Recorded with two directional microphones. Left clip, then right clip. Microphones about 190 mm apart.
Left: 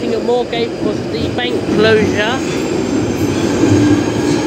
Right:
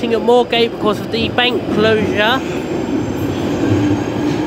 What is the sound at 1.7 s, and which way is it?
Speech, 15° right (ahead or behind).